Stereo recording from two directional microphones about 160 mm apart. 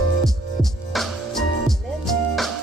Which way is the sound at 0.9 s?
Centre (ahead or behind).